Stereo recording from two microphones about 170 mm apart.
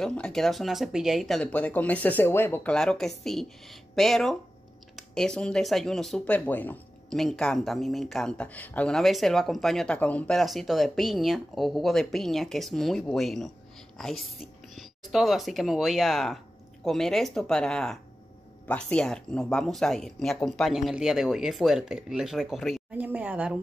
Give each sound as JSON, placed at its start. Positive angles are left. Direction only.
{"t": 0.0, "sound": "speech", "side_deg": 5}